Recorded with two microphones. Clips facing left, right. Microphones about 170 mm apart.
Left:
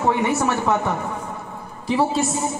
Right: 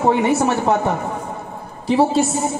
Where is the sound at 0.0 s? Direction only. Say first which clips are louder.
Right 4 dB; 30° right (ahead or behind).